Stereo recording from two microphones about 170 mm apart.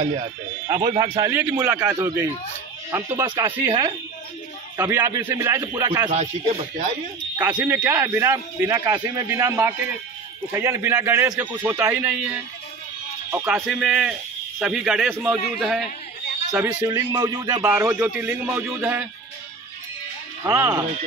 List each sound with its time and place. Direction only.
0.0 s speech: 40° right (ahead or behind)
0.7 s speech: 25° right (ahead or behind)
3.3 s speech: 30° right (ahead or behind)
6.1 s speech: 40° right (ahead or behind)
7.3 s speech: 10° right (ahead or behind)
13.6 s a man's voice: 5° right (ahead or behind)
16.8 s speech: 25° right (ahead or behind)
17.6 s speech: 10° right (ahead or behind)
20.4 s speech: 20° right (ahead or behind)